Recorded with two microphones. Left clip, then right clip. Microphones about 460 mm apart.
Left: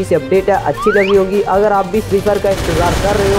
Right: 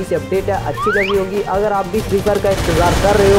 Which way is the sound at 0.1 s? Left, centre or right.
Left.